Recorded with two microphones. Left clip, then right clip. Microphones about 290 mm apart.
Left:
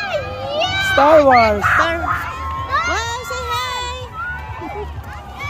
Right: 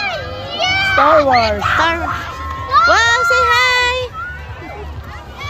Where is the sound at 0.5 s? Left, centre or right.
Left.